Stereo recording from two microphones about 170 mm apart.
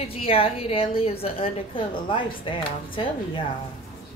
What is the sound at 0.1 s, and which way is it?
A woman's voice, 35° left (ahead or behind).